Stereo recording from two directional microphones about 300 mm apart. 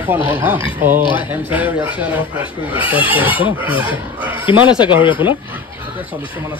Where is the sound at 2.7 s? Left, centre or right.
Centre.